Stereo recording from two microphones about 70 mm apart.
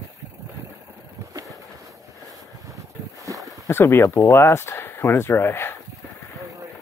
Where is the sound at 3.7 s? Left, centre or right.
Left.